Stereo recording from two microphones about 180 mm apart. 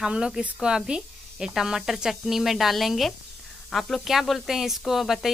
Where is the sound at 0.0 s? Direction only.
5° right (ahead or behind).